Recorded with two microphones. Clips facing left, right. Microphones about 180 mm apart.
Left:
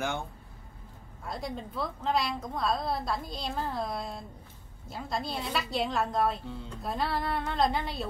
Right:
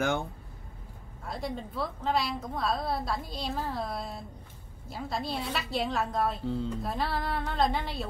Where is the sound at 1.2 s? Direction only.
Centre (ahead or behind).